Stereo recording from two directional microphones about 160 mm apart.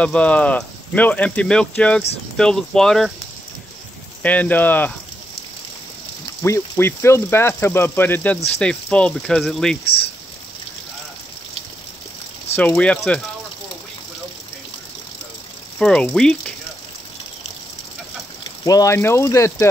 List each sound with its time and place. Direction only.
0.0 s speech: 5° left (ahead or behind)
4.2 s speech: 10° left (ahead or behind)
6.4 s speech: 15° left (ahead or behind)
12.5 s speech: 10° left (ahead or behind)
15.8 s speech: 5° left (ahead or behind)
18.4 s speech: 20° left (ahead or behind)